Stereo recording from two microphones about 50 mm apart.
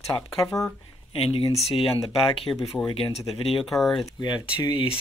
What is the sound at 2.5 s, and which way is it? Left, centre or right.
Speech, left.